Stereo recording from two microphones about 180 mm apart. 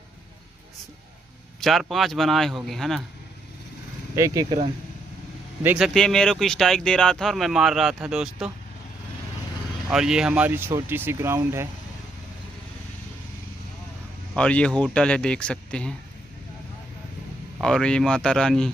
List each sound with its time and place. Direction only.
1.6 s speech: centre (ahead or behind)
4.1 s speech: 15° right (ahead or behind)
5.6 s speech: 10° right (ahead or behind)
5.9 s speech: 5° left (ahead or behind)
9.8 s speech: 5° right (ahead or behind)
14.3 s speech: 5° left (ahead or behind)
17.6 s speech: centre (ahead or behind)